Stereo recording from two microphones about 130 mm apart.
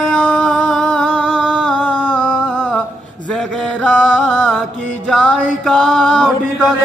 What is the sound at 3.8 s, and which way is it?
Music, 5° left (ahead or behind).